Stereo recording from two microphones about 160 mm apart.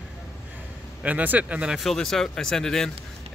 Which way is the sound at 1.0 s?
10° right (ahead or behind).